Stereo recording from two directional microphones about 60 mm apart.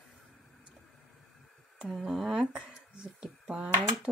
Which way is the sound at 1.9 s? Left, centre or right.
Centre.